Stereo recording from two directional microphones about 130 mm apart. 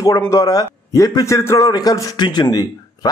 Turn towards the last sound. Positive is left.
turn(degrees=30)  # may be behind; listen again after turning